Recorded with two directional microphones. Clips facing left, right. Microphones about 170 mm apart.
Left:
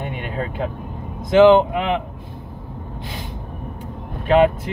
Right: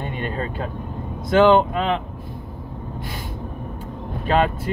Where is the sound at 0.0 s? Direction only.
15° left (ahead or behind).